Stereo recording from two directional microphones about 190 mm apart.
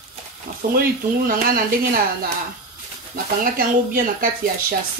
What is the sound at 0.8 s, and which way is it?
Speech, 50° right (ahead or behind).